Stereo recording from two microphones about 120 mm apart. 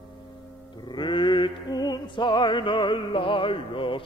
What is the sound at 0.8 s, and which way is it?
Music, 40° left (ahead or behind).